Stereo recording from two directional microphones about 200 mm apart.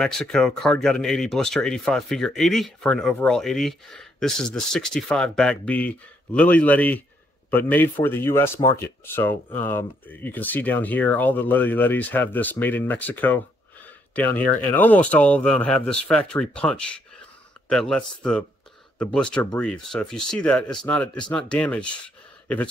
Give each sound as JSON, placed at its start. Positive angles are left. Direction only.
{"t": 0.0, "sound": "speech", "side_deg": 5}